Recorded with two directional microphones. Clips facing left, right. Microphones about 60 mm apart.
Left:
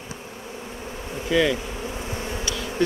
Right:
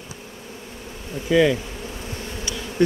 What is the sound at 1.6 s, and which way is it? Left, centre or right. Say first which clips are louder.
Bee: left 2 dB; left.